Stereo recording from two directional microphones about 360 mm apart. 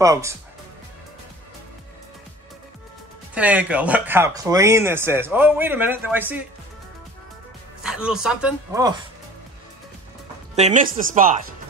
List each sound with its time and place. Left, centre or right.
0.0 s speech: centre
3.3 s speech: centre
7.8 s speech: centre
10.5 s speech: centre